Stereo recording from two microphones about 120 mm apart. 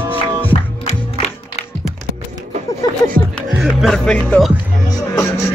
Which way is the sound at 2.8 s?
35° left (ahead or behind).